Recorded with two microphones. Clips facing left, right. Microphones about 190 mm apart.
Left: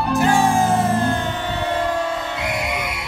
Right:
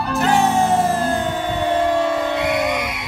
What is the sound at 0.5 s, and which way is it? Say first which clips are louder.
Music: right 1 dB; 5° left (ahead or behind).